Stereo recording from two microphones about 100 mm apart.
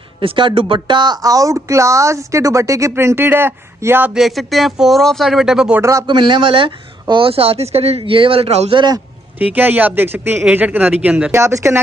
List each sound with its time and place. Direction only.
0.2 s speech: 60° right (ahead or behind); by 4.1 s 20° right (ahead or behind)
4.1 s speech: centre (ahead or behind)
5.8 s speech: 30° right (ahead or behind)
6.0 s speech: 50° right (ahead or behind); by 8.0 s 90° right
8.0 s speech: 60° right (ahead or behind); by 8.7 s 85° right
8.7 s a man's voice: 45° right (ahead or behind)
9.4 s speech: 15° right (ahead or behind)
11.3 s speech: 25° right (ahead or behind)